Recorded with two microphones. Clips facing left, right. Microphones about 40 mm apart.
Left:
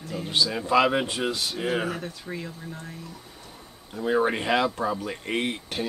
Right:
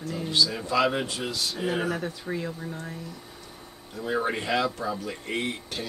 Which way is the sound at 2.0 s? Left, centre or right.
Centre.